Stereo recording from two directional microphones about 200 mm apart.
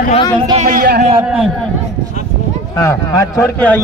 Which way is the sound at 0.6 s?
40° right (ahead or behind).